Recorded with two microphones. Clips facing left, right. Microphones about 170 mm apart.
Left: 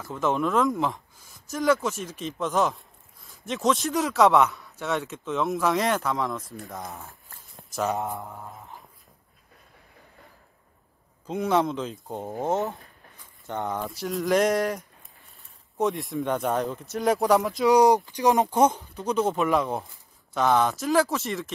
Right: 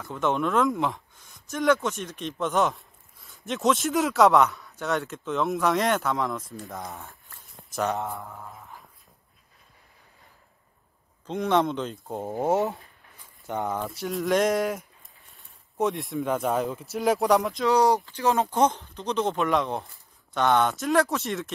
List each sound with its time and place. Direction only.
0.0 s speech: centre (ahead or behind)
6.6 s a sound: centre (ahead or behind)
8.0 s speech: 15° left (ahead or behind)
11.2 s speech: 5° left (ahead or behind)
12.3 s speech: 10° right (ahead or behind)
17.6 s speech: 15° left (ahead or behind)